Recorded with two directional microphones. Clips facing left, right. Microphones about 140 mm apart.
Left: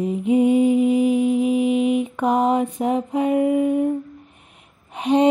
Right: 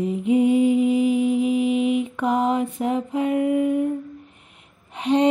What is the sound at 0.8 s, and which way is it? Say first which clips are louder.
Mantra: left 2 dB; 15° left (ahead or behind).